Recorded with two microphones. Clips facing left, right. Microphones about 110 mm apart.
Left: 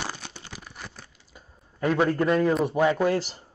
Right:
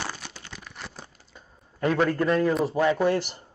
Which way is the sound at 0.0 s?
15° left (ahead or behind).